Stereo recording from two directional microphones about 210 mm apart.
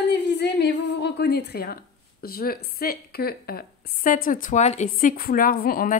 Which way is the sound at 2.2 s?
45° left (ahead or behind).